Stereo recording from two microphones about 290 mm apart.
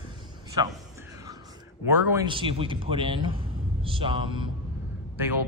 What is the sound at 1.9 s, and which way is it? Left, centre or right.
Speech, centre.